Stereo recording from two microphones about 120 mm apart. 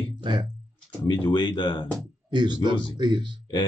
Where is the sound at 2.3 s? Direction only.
40° right (ahead or behind).